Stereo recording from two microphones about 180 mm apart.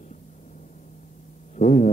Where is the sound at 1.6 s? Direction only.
45° left (ahead or behind).